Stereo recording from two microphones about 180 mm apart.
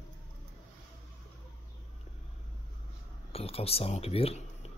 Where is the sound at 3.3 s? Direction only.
35° left (ahead or behind).